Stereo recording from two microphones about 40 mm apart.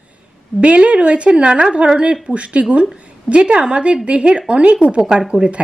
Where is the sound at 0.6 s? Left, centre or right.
Right.